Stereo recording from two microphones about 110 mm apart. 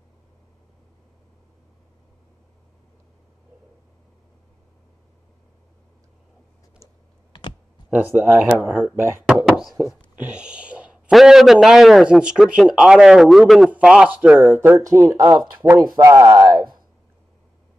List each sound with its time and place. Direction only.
7.9 s speech: 15° right (ahead or behind)
8.9 s speech: 25° right (ahead or behind)
9.5 s a sound: centre (ahead or behind)
10.1 s a man's voice: 10° right (ahead or behind); by 16.8 s 40° right (ahead or behind)